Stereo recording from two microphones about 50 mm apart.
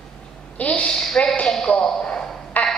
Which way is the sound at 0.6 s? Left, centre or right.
Left.